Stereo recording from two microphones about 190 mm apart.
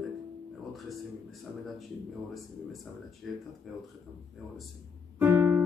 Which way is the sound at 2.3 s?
Centre (ahead or behind).